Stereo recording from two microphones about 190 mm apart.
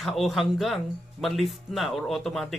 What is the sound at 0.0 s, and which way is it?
Speech, centre (ahead or behind).